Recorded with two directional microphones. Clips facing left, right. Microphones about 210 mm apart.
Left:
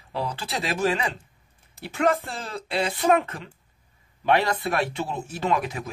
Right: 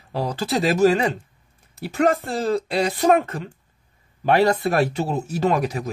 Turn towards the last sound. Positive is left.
turn(degrees=-40)  # may be behind; listen again after turning